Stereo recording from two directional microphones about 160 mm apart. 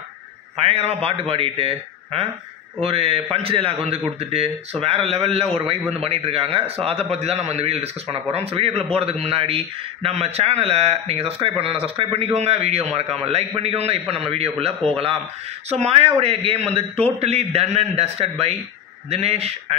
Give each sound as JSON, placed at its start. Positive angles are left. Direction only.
{"t": 0.6, "sound": "a man's voice", "side_deg": -40}
{"t": 15.8, "sound": "a man's voice", "side_deg": -40}